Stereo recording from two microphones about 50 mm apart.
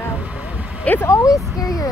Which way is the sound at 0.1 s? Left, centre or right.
Right.